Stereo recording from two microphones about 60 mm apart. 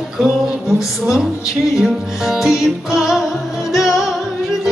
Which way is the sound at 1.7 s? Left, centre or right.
Centre.